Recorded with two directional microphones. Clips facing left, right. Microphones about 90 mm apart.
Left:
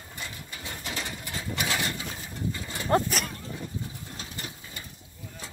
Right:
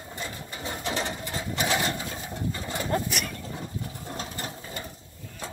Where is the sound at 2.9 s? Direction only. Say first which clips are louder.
Left 5 dB; 40° left (ahead or behind).